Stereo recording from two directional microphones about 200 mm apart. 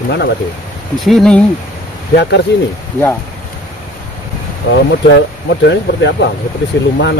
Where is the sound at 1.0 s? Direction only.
Centre (ahead or behind).